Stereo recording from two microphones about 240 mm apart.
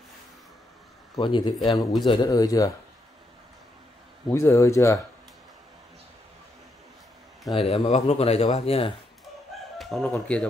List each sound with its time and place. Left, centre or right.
1.1 s speech: centre
1.7 s speech: centre
2.0 s speech: centre
4.3 s speech: centre
7.5 s speech: left
9.8 s speech: centre